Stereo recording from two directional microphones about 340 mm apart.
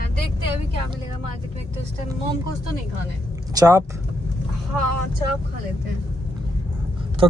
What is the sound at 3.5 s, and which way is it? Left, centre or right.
Speech, centre.